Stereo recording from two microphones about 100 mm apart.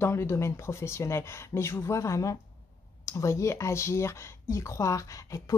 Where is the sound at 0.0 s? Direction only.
25° left (ahead or behind).